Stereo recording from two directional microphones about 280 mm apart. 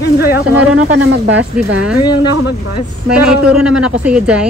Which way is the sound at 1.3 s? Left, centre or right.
Centre.